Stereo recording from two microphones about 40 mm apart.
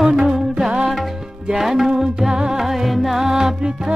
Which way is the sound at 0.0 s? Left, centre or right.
Centre.